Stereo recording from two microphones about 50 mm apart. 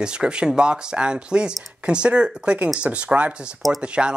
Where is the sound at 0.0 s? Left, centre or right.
Centre.